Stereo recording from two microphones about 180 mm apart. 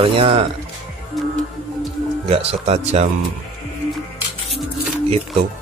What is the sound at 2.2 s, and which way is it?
Speech, 35° right (ahead or behind).